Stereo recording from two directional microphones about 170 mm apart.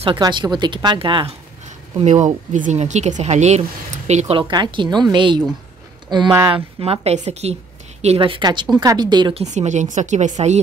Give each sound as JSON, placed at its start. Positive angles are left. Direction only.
{"t": 0.0, "sound": "a woman's voice", "side_deg": -30}
{"t": 2.0, "sound": "a woman's voice", "side_deg": -45}
{"t": 9.4, "sound": "a woman's voice", "side_deg": -40}